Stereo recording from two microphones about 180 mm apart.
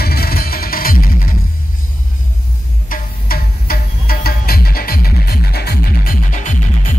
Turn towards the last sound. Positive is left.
turn(degrees=45)  # may be behind; listen again after turning